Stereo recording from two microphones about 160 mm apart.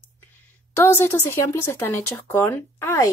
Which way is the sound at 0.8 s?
15° left (ahead or behind).